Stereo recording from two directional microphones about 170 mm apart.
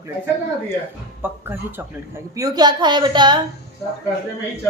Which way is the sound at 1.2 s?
10° right (ahead or behind).